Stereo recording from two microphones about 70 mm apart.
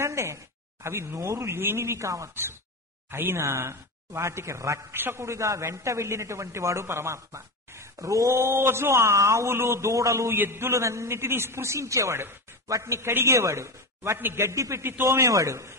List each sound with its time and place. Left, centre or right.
0.0 s a sound: right
0.8 s a man's voice: right
4.9 s a man's voice: right
8.4 s a man's voice: right
12.6 s a man's voice: right
14.8 s a man's voice: right
15.2 s a man's voice: right